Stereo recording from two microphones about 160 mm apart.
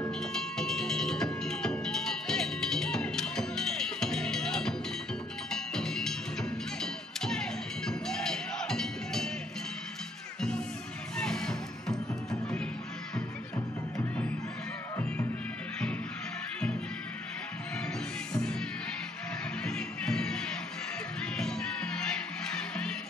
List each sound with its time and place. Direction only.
0.2 s music: 5° left (ahead or behind)
11.1 s music: 5° left (ahead or behind)
18.3 s music: 5° left (ahead or behind)
19.6 s music: 5° left (ahead or behind)